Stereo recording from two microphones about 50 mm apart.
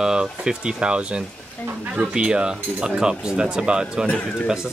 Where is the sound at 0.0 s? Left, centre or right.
Centre.